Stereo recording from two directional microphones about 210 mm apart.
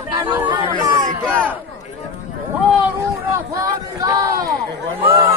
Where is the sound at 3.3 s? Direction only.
15° right (ahead or behind).